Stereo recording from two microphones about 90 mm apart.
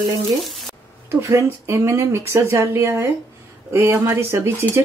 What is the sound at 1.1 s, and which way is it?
Speech, 30° right (ahead or behind).